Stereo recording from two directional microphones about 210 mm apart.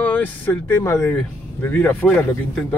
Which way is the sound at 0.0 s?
5° left (ahead or behind).